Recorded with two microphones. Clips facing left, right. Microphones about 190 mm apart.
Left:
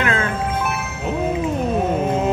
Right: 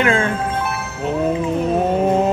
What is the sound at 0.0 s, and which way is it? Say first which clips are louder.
Music: right 4 dB; 30° right (ahead or behind).